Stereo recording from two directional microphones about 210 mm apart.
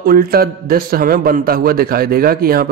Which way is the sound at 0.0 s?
45° right (ahead or behind).